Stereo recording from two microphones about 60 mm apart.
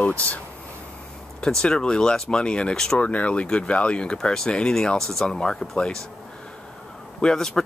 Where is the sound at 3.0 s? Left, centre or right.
Left.